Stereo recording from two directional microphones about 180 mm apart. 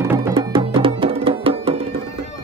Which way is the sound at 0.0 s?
15° right (ahead or behind).